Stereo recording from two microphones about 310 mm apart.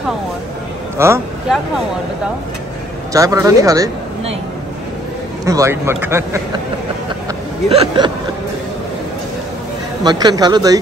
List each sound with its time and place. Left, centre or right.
0.9 s a man's voice: centre
3.1 s a man's voice: centre
5.4 s a man's voice: centre
7.7 s a man's voice: centre
10.0 s a man's voice: centre